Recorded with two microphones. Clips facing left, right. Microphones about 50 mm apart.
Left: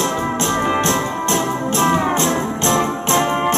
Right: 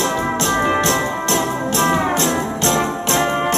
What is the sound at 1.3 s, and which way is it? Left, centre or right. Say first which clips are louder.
Music: left 1 dB; left.